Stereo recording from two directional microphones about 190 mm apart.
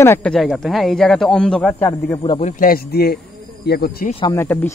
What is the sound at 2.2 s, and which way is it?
Speech, 30° left (ahead or behind).